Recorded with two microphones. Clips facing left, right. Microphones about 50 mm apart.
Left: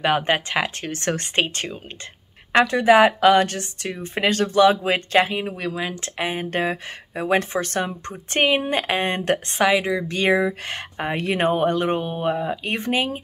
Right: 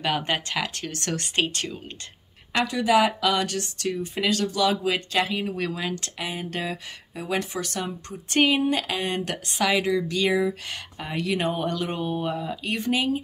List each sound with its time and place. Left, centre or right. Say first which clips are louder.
0.0 s speech: left 6 dB; left
2.5 s speech: left 6 dB; left; by 6.0 s centre
6.1 s speech: left 6 dB; left
9.7 s speech: left 2 dB; left
10.0 s speech: left 3 dB; left